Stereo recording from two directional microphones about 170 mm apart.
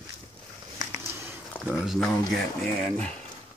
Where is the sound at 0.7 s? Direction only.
15° right (ahead or behind).